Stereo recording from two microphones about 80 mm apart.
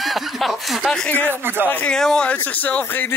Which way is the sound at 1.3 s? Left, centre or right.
Right.